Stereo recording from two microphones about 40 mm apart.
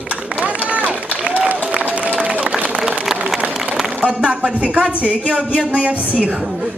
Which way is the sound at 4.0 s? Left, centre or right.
Right.